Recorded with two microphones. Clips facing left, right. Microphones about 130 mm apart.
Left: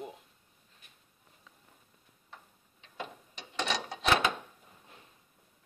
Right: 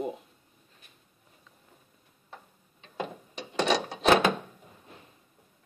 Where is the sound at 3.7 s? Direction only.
70° right (ahead or behind).